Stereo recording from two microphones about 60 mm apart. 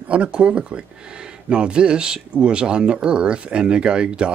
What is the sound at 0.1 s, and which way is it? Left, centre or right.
Speech, right.